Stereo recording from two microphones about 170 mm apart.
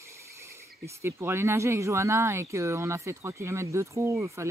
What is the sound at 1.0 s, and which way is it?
Speech, 15° right (ahead or behind).